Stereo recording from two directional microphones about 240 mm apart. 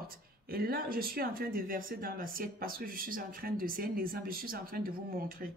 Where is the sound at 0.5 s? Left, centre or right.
Right.